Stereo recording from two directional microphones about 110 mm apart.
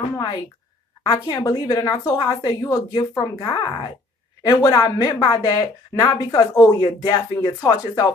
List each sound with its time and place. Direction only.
1.0 s a woman's voice: 40° left (ahead or behind)